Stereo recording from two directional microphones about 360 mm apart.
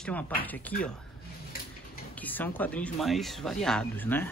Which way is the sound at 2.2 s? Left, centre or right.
Centre.